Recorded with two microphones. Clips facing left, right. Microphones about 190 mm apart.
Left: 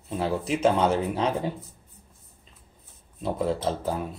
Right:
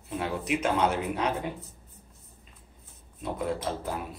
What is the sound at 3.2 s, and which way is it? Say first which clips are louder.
Speech: left 4 dB; 30° left (ahead or behind).